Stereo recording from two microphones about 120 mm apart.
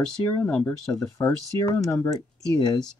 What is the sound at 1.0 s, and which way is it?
Speech, 20° left (ahead or behind).